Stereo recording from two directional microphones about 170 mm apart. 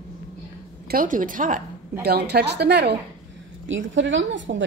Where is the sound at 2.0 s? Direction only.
70° right (ahead or behind).